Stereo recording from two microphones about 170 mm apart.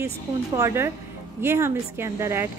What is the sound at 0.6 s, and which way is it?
A woman's voice, 15° right (ahead or behind).